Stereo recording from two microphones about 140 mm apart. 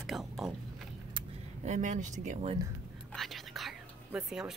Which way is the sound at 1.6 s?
60° right (ahead or behind).